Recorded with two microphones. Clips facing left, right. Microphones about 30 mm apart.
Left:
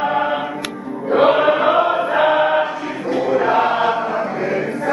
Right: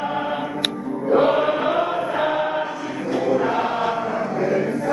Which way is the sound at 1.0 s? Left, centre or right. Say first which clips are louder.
Left 4 dB; left.